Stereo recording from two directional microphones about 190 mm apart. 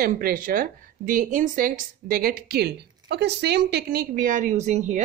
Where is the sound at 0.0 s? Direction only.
50° right (ahead or behind).